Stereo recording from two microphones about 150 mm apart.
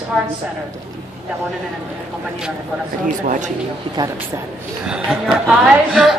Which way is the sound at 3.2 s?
60° right (ahead or behind).